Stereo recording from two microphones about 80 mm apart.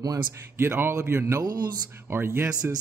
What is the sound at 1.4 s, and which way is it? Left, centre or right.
Music, right.